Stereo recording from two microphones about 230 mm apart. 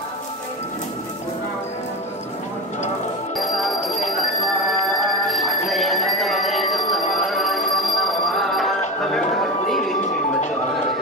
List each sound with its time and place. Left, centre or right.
3.3 s music: centre
4.1 s bell: centre
9.9 s music: left